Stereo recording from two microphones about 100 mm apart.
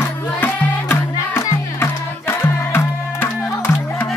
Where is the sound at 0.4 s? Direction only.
25° left (ahead or behind).